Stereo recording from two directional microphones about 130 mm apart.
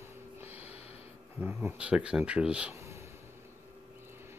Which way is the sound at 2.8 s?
20° right (ahead or behind).